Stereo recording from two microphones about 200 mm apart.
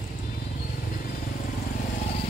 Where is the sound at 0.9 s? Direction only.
45° left (ahead or behind).